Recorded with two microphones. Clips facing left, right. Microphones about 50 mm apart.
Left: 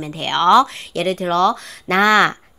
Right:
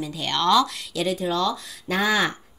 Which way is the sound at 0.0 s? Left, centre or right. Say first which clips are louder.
Left 6 dB; left.